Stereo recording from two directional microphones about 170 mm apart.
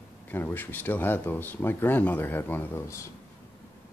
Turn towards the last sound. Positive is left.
turn(degrees=15)  # may be behind; listen again after turning